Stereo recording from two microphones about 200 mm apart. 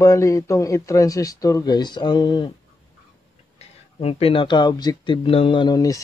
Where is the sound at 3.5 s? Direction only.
30° left (ahead or behind).